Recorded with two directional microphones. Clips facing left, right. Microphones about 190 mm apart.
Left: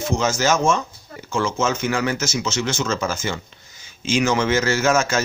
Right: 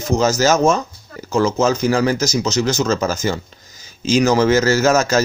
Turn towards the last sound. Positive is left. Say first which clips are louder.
# right 4 dB
turn(degrees=-40)  # may be behind; listen again after turning